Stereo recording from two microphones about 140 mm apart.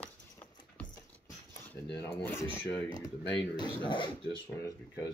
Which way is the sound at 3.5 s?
35° left (ahead or behind).